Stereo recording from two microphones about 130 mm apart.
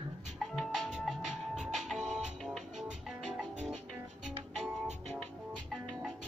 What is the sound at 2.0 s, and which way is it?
Music, 65° right (ahead or behind).